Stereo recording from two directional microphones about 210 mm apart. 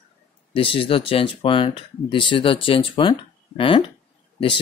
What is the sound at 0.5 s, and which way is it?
Speech, 25° left (ahead or behind).